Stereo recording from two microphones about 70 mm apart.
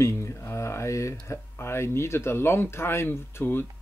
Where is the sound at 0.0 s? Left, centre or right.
Left.